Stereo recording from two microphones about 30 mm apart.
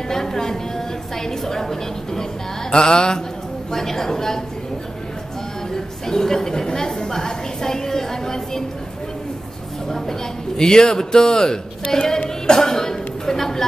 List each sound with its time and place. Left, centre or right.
0.1 s a woman's voice: centre
2.7 s a man's voice: left
3.7 s a woman's voice: centre
5.7 s a sound: centre
9.8 s a woman's voice: centre
12.4 s a sound: centre